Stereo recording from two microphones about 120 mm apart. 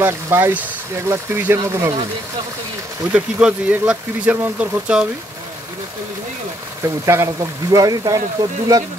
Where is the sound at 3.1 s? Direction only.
10° right (ahead or behind).